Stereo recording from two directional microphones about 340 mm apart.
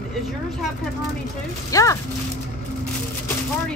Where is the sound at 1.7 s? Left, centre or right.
Centre.